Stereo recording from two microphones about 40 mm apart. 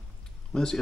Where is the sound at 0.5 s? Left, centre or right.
Centre.